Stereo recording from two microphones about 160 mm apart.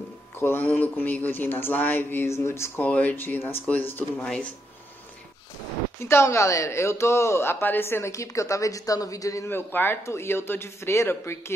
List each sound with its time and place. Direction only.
0.4 s speech: 15° left (ahead or behind)
5.9 s speech: 15° left (ahead or behind)